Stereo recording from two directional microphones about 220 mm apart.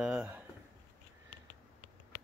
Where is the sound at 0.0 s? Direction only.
5° right (ahead or behind).